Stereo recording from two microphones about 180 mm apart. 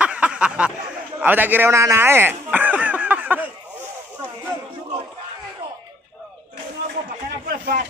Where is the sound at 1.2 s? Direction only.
10° right (ahead or behind).